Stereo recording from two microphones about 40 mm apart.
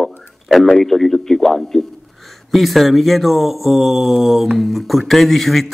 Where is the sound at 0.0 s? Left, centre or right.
Centre.